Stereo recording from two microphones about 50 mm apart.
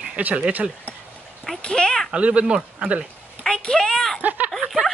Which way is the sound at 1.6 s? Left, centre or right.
Centre.